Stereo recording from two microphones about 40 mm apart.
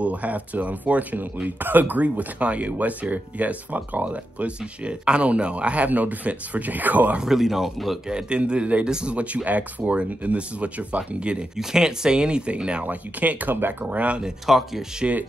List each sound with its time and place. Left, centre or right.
0.0 s speech: right
2.0 s speech: right
7.2 s speech: centre
8.1 s speech: right
9.1 s speech: right
11.5 s speech: centre
12.8 s speech: right
14.4 s speech: centre
15.0 s speech: right